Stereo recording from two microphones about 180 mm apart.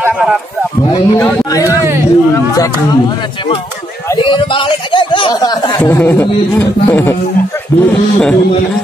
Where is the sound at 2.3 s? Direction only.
20° left (ahead or behind).